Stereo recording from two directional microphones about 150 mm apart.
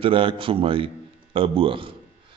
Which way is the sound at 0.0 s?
35° right (ahead or behind).